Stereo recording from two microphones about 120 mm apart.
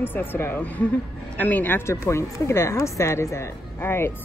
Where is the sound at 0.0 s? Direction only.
15° left (ahead or behind).